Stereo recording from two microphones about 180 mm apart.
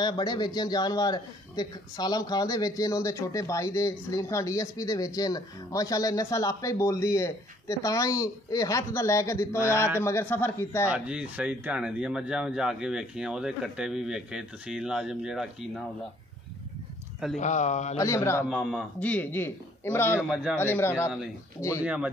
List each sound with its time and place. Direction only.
0.0 s a man's voice: 25° left (ahead or behind)
10.9 s speech: 5° right (ahead or behind)
17.4 s speech: 40° left (ahead or behind)
17.9 s a man's voice: 15° left (ahead or behind)
18.5 s a man's voice: centre (ahead or behind); by 21.8 s 15° left (ahead or behind)
21.8 s speech: 5° right (ahead or behind)